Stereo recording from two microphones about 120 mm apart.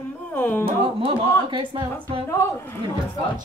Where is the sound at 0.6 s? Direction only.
50° right (ahead or behind).